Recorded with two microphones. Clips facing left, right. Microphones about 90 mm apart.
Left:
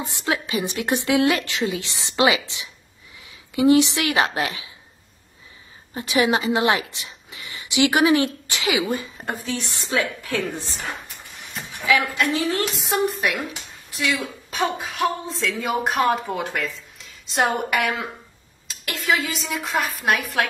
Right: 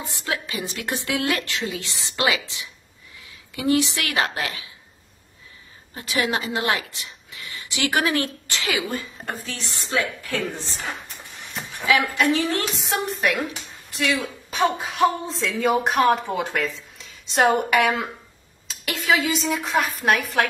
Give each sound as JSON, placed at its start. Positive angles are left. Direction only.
{"t": 0.0, "sound": "a woman's voice", "side_deg": 20}
{"t": 5.9, "sound": "a woman's voice", "side_deg": 20}
{"t": 11.5, "sound": "a woman's voice", "side_deg": 0}